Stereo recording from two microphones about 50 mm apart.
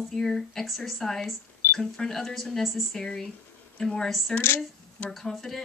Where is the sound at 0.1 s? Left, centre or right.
Centre.